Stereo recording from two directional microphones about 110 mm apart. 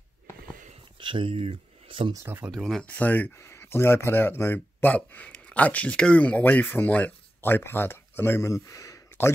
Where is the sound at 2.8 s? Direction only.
15° left (ahead or behind).